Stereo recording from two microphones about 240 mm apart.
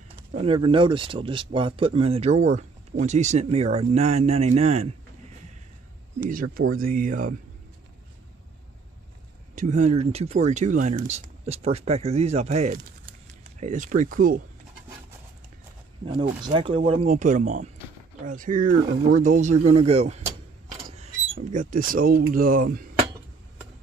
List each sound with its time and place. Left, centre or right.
0.3 s speech: right
6.1 s speech: right
9.6 s speech: right
16.4 s speech: right